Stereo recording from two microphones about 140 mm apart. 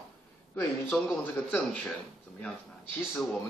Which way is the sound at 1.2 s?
10° left (ahead or behind).